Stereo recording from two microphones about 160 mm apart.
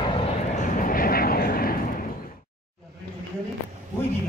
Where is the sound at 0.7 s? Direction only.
60° left (ahead or behind).